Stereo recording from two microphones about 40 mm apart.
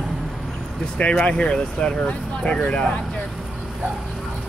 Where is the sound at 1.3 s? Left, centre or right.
Left.